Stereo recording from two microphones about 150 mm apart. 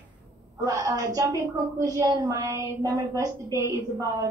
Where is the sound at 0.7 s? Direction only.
25° right (ahead or behind).